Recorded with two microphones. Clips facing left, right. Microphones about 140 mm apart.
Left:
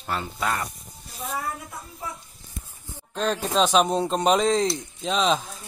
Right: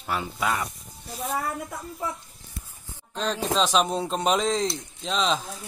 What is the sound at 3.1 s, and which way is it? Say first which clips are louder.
Speech: left 2 dB; 5° left (ahead or behind).